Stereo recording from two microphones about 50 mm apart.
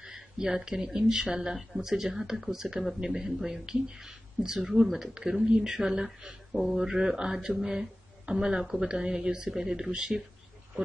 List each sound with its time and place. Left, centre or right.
0.0 s speech: centre